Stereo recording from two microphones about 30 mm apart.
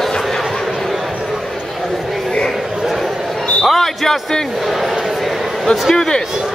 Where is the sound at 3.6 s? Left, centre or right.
Centre.